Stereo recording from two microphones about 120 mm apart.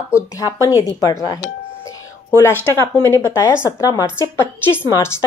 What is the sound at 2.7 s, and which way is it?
A woman's voice, 20° left (ahead or behind).